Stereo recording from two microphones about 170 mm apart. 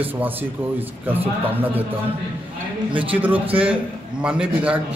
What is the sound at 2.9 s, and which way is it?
Speech, 30° right (ahead or behind).